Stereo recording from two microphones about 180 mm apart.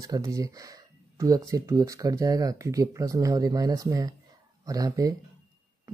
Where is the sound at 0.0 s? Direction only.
20° right (ahead or behind).